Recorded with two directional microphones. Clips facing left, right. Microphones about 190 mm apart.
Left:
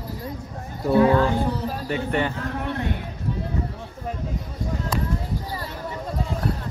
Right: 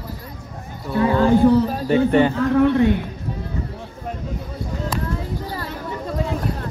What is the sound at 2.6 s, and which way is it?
Speech, 90° right.